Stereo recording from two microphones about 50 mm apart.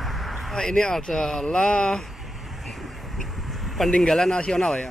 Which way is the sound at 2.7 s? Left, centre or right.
Centre.